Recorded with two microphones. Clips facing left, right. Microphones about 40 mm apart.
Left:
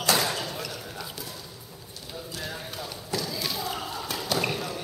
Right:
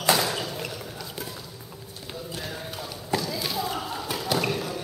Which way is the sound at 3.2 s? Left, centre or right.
Centre.